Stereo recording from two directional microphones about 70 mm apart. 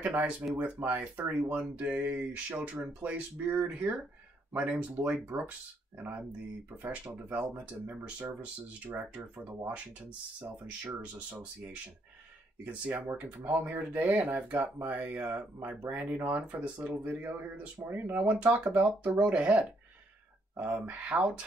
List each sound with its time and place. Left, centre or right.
0.0 s speech: centre
7.2 s speech: right
11.0 s speech: centre